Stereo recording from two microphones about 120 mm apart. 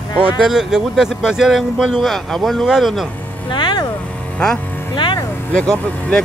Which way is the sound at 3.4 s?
40° left (ahead or behind).